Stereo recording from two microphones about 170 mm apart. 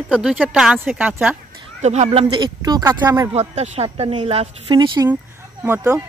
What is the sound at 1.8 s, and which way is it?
Speech, 40° right (ahead or behind).